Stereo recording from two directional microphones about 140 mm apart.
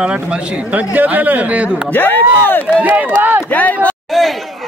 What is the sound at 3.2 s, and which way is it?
Speech, 15° right (ahead or behind).